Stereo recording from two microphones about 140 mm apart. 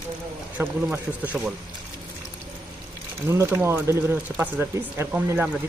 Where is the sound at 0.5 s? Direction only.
10° right (ahead or behind).